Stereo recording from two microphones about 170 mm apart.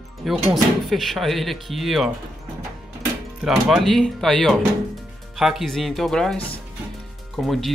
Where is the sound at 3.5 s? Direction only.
Centre (ahead or behind).